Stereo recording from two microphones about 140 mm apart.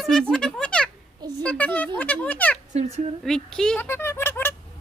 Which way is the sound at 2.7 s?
50° right (ahead or behind).